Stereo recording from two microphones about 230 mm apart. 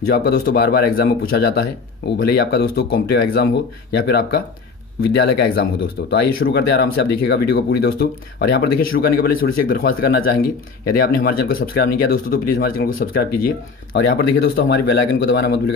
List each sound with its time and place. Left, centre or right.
0.1 s a man's voice: left